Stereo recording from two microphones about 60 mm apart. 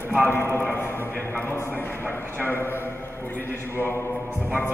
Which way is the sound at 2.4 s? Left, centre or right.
Left.